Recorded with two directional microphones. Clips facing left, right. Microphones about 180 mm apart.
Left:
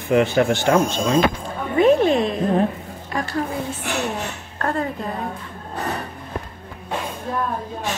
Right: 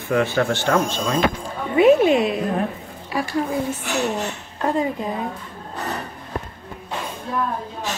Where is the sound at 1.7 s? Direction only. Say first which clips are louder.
Right 1 dB; 10° right (ahead or behind).